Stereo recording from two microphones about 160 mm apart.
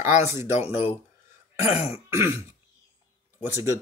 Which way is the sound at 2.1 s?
15° right (ahead or behind).